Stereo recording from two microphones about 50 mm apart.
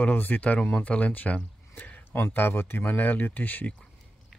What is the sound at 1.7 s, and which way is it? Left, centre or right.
Speech, left.